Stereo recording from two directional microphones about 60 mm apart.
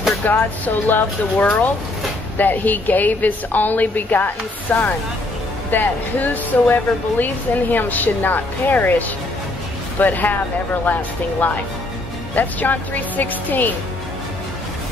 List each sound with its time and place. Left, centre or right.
0.2 s a woman's voice: left